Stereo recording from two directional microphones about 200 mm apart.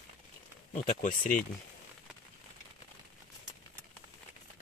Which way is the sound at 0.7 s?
40° left (ahead or behind).